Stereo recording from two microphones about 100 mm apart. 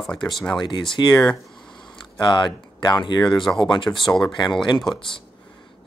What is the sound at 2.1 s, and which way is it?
Speech, 50° left (ahead or behind).